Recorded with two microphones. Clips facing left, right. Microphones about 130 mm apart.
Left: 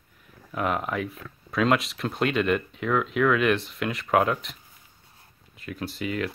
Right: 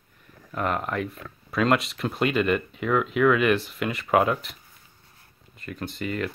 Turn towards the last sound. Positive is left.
turn(degrees=0)  # may be behind; listen again after turning